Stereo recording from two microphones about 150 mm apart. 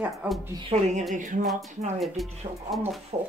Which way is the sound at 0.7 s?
50° right (ahead or behind).